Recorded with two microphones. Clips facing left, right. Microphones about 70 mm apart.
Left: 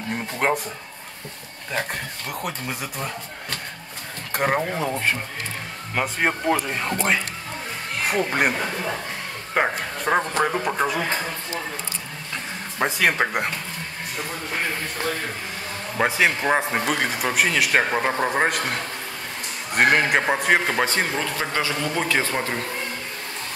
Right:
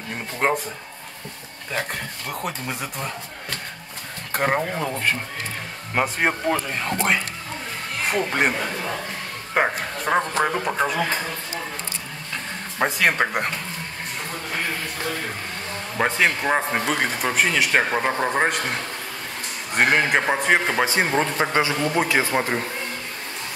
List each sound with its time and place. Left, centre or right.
2.3 s speech: centre
4.3 s speech: centre
6.0 s speech: centre
6.4 s speech: centre
8.0 s a man's voice: centre
12.8 s speech: centre
16.0 s speech: centre
21.0 s a man's voice: right